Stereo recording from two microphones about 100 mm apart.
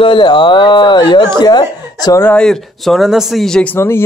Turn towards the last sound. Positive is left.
turn(degrees=25)  # may be behind; listen again after turning